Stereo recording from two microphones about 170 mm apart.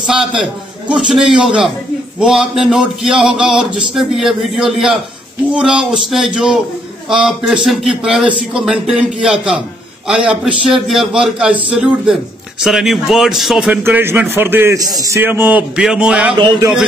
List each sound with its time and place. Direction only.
0.0 s a man's voice: 5° right (ahead or behind)
13.8 s a man's voice: 10° right (ahead or behind)
16.3 s speech: 25° right (ahead or behind)